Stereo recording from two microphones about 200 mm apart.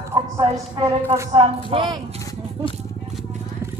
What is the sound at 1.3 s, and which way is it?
Speech, 25° right (ahead or behind).